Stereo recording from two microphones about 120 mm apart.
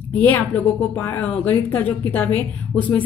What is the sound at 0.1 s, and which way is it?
A woman's voice, 15° left (ahead or behind).